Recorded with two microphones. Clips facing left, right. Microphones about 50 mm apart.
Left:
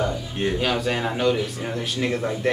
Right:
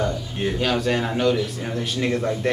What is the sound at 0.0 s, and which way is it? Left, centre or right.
Speech, centre.